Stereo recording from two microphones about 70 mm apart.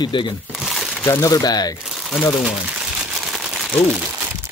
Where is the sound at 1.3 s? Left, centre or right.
Left.